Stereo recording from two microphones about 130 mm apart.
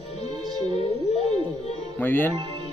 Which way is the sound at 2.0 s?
15° left (ahead or behind).